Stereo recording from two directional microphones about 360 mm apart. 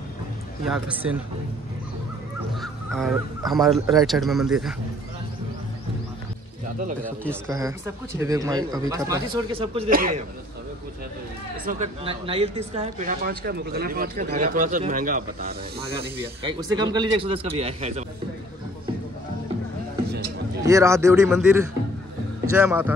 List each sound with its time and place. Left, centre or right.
0.7 s speech: centre
2.6 s speech: centre
6.8 s speech: right
7.2 s speech: centre
11.6 s speech: centre
20.6 s speech: centre